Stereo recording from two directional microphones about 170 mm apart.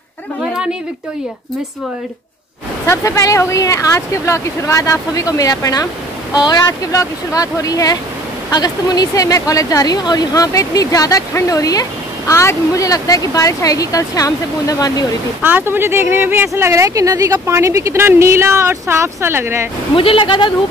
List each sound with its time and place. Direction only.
2.9 s a woman's voice: 20° left (ahead or behind)
15.4 s speech: 10° right (ahead or behind)
20.0 s a woman's voice: 30° left (ahead or behind)